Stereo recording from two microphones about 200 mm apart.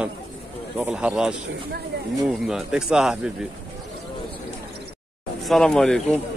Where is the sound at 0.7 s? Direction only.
5° right (ahead or behind).